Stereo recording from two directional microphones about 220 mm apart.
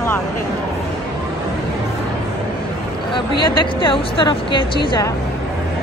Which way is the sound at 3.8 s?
20° left (ahead or behind).